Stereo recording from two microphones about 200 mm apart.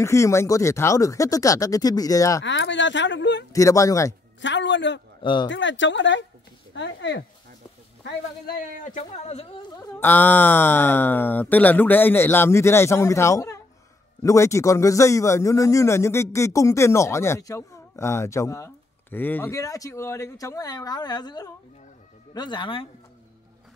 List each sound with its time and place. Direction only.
0.0 s a man's voice: 15° left (ahead or behind)
2.4 s speech: 60° left (ahead or behind)
3.5 s a man's voice: 15° left (ahead or behind)
4.4 s speech: 65° left (ahead or behind)
5.2 s speech: 25° left (ahead or behind)
5.5 s speech: 65° left (ahead or behind)
8.5 s speech: 45° left (ahead or behind)
9.9 s a man's voice: 10° left (ahead or behind)